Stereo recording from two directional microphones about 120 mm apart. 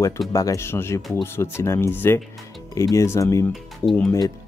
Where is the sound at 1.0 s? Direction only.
Centre (ahead or behind).